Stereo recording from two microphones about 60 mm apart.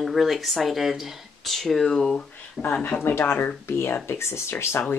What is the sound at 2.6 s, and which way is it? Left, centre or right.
Speech, centre.